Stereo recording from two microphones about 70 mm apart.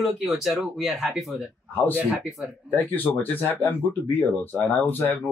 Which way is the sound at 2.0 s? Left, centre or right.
Centre.